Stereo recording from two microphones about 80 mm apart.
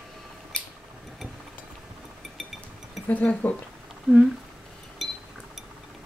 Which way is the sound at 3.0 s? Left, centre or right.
Centre.